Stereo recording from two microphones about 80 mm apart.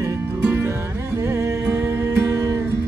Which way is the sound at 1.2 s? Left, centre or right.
Right.